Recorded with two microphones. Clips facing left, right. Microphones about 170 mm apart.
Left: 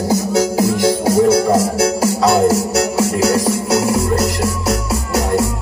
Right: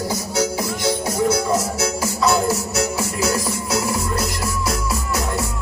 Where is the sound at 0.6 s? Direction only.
90° left.